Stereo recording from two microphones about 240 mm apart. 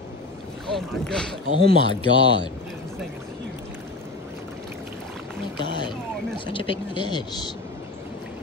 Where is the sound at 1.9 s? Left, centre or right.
Centre.